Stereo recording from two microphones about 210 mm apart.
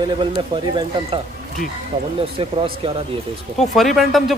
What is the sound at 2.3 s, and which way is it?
Speech, 25° right (ahead or behind).